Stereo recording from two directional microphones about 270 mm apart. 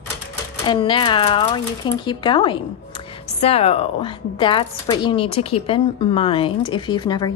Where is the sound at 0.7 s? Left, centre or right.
Centre.